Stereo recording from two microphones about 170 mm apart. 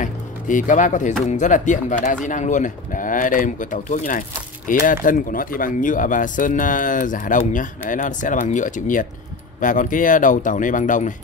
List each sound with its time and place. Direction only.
0.0 s music: 50° left (ahead or behind)
1.2 s speech: 45° left (ahead or behind)